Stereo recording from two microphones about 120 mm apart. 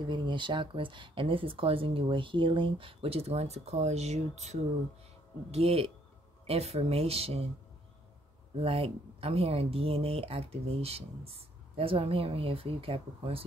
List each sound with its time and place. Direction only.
0.0 s speech: 40° right (ahead or behind)
8.5 s speech: 50° right (ahead or behind)